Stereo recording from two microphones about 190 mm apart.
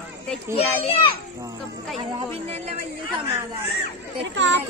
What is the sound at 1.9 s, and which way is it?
Speech, 30° right (ahead or behind).